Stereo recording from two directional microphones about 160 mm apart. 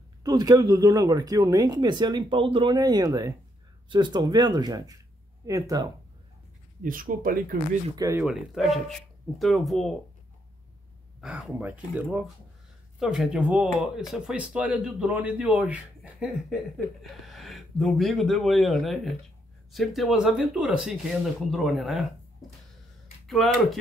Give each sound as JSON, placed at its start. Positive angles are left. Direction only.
{"t": 0.2, "sound": "speech", "side_deg": -25}
{"t": 6.8, "sound": "speech", "side_deg": -60}
{"t": 7.9, "sound": "speech", "side_deg": -25}
{"t": 8.2, "sound": "speech", "side_deg": -5}
{"t": 11.1, "sound": "speech", "side_deg": 0}
{"t": 23.2, "sound": "speech", "side_deg": 0}